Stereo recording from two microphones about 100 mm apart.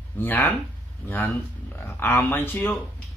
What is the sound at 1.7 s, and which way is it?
Speech, 20° left (ahead or behind).